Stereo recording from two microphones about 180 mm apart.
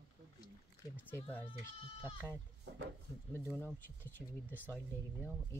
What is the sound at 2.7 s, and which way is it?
Speech, 75° right (ahead or behind).